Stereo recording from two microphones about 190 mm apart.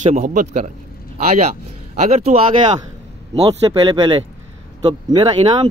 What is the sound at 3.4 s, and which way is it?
Speech, 25° right (ahead or behind).